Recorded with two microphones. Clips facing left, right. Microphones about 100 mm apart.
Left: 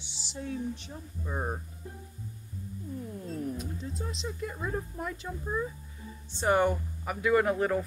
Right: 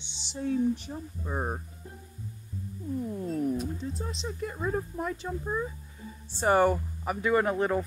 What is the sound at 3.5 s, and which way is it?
Speech, centre (ahead or behind).